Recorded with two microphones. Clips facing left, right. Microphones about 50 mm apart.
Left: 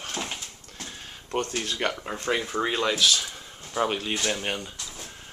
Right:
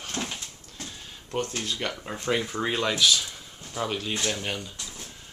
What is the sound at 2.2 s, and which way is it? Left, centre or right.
Speech, centre.